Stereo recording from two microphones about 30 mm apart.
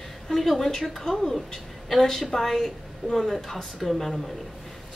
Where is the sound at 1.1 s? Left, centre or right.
Centre.